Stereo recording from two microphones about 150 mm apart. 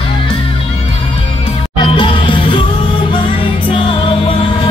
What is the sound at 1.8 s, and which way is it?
Music, 35° left (ahead or behind).